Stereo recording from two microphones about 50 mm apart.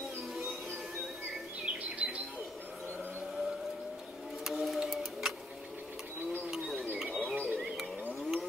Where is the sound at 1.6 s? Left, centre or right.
Right.